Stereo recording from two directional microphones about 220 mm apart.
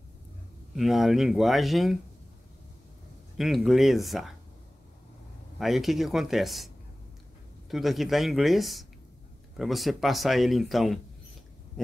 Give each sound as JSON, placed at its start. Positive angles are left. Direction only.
{"t": 0.7, "sound": "speech", "side_deg": 0}
{"t": 3.3, "sound": "speech", "side_deg": 0}
{"t": 5.6, "sound": "speech", "side_deg": 0}
{"t": 7.7, "sound": "speech", "side_deg": 0}